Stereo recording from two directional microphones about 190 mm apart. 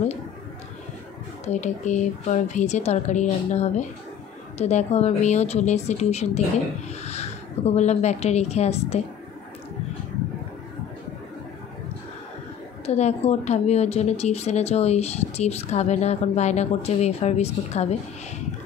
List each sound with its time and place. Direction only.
1.4 s a woman's voice: 40° left (ahead or behind)
12.8 s a woman's voice: 35° left (ahead or behind)